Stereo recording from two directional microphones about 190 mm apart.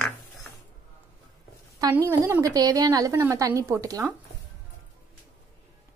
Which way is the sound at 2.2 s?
15° right (ahead or behind).